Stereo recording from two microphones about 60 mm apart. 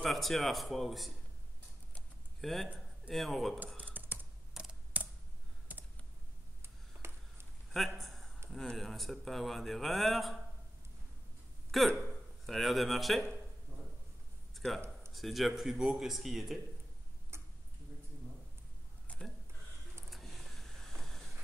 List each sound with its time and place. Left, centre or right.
0.0 s a man's voice: centre
2.4 s a man's voice: centre
3.8 s typing: right
4.6 s typing: centre
4.9 s computer keyboard: right
6.6 s a sound: right
7.7 s a man's voice: centre
11.7 s a man's voice: centre
14.5 s a sound: centre
15.1 s a man's voice: centre
17.3 s tick-tock: right
19.1 s a sound: left
20.1 s a sound: centre